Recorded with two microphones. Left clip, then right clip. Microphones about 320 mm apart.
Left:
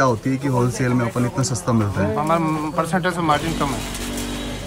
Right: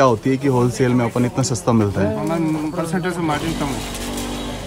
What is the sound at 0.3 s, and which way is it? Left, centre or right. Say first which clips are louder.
Speech: right 4 dB; centre.